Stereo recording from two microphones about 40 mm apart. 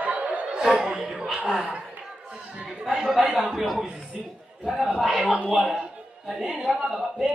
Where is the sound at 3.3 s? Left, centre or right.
Centre.